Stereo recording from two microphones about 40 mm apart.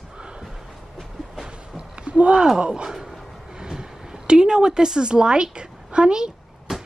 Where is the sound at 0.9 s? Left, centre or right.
Centre.